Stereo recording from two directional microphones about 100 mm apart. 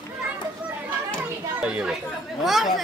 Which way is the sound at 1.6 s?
10° right (ahead or behind).